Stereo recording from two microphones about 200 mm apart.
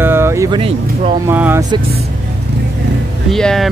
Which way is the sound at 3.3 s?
Centre (ahead or behind).